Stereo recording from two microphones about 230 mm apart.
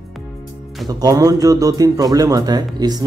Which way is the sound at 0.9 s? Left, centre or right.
Centre.